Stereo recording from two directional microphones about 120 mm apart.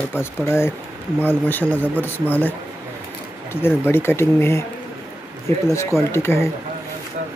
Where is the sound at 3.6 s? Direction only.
20° left (ahead or behind).